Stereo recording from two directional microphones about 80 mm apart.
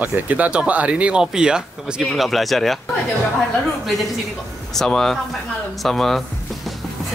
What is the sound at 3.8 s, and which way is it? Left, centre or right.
Speech, centre.